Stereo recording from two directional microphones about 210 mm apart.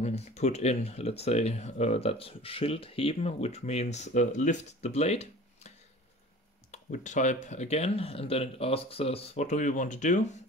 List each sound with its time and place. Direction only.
0.0 s speech: 30° left (ahead or behind)
6.7 s speech: 35° left (ahead or behind)